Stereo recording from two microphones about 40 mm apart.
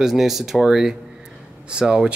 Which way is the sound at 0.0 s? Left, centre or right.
Centre.